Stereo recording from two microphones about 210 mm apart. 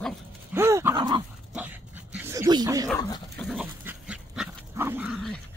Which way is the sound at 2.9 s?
20° left (ahead or behind).